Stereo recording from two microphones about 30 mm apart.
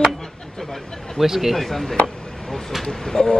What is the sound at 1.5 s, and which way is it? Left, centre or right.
Speech, centre.